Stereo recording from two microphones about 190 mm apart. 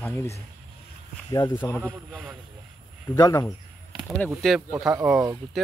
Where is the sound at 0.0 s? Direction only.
10° left (ahead or behind).